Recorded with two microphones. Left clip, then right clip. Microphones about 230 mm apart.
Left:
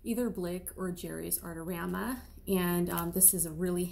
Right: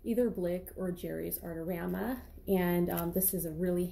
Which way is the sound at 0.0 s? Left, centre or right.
Centre.